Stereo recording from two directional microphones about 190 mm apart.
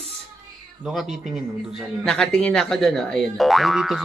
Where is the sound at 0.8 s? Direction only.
Centre (ahead or behind).